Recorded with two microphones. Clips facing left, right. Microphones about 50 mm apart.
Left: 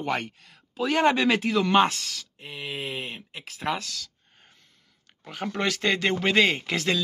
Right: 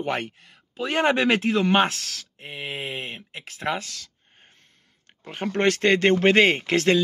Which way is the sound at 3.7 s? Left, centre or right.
Right.